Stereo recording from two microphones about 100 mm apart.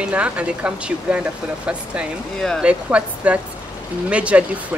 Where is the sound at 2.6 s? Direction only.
10° right (ahead or behind).